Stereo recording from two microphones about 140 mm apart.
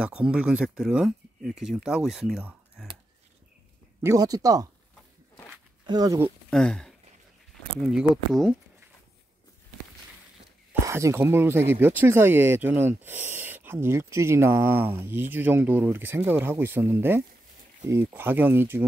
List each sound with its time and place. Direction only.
0.0 s speech: 5° right (ahead or behind)
4.0 s speech: 25° right (ahead or behind)
5.9 s speech: 25° right (ahead or behind)
6.5 s speech: 5° left (ahead or behind)
7.9 s speech: 5° right (ahead or behind)
10.7 s speech: 20° right (ahead or behind)